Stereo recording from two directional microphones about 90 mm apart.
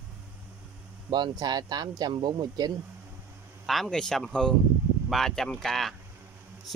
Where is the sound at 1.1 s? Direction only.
50° right (ahead or behind).